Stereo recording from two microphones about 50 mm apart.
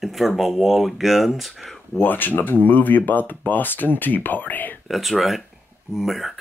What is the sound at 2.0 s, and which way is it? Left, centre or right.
Speech, left.